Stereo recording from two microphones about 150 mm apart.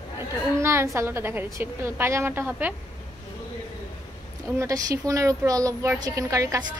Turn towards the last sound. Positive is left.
turn(degrees=-20)  # may be behind; listen again after turning